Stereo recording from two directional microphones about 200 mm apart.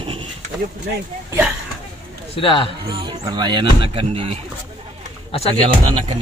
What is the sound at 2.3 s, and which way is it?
Speech, 25° left (ahead or behind).